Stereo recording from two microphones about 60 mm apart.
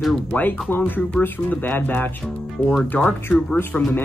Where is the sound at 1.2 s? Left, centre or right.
Left.